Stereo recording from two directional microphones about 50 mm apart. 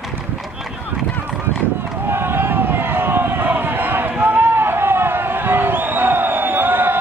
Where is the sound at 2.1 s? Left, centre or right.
Right.